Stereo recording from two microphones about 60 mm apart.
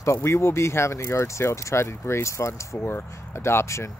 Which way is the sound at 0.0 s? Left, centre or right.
Left.